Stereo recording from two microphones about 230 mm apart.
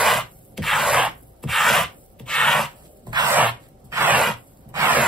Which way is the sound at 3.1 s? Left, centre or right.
Centre.